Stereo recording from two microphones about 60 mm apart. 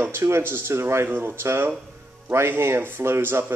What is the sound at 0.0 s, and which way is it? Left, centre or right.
Speech, right.